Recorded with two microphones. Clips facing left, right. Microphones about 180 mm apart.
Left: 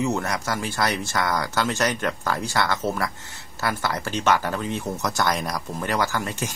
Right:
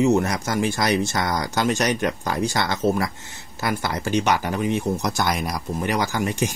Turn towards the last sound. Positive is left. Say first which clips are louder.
# right 3 dB
turn(degrees=-15)  # may be behind; listen again after turning